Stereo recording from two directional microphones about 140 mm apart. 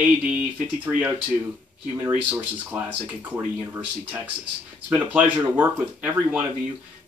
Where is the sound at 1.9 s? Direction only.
20° right (ahead or behind).